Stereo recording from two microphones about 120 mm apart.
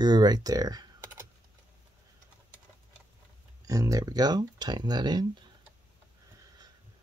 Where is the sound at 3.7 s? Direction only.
30° right (ahead or behind).